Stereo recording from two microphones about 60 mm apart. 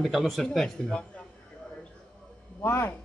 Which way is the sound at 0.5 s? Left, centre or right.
Centre.